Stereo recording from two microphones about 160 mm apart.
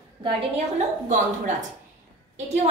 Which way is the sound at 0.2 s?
40° right (ahead or behind).